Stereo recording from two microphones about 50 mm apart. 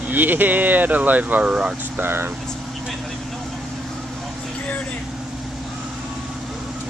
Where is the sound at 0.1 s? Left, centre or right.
Right.